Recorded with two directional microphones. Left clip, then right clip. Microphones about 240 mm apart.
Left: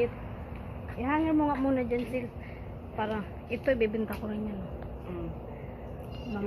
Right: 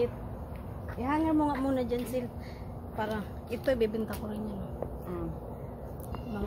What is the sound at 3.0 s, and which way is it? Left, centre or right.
Speech, left.